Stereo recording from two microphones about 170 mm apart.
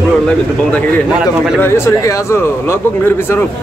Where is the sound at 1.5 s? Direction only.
15° left (ahead or behind).